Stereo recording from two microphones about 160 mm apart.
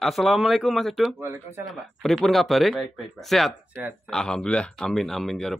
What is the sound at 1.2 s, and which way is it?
Speech, 15° right (ahead or behind).